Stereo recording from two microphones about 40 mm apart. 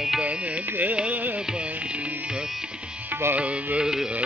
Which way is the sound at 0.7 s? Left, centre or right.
Right.